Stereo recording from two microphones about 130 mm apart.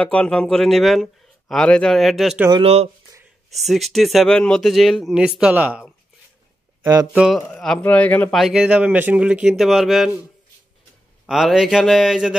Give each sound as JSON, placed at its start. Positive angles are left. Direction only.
{"t": 0.0, "sound": "speech", "side_deg": 10}
{"t": 2.6, "sound": "speech", "side_deg": -50}
{"t": 3.5, "sound": "speech", "side_deg": 0}
{"t": 6.8, "sound": "speech", "side_deg": -30}
{"t": 7.1, "sound": "speech", "side_deg": -5}
{"t": 7.3, "sound": "a man's voice", "side_deg": 5}
{"t": 8.4, "sound": "speech", "side_deg": -5}
{"t": 11.2, "sound": "speech", "side_deg": -5}